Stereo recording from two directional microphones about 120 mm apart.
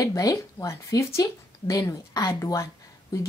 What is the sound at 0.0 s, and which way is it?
A woman's voice, 30° left (ahead or behind).